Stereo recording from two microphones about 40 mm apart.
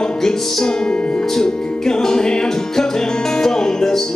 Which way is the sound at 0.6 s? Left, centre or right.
Centre.